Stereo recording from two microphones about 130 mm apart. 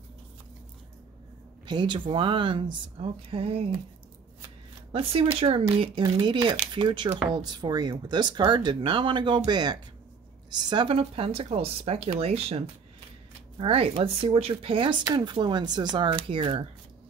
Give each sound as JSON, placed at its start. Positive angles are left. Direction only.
{"t": 1.7, "sound": "speech", "side_deg": -40}
{"t": 4.9, "sound": "speech", "side_deg": -45}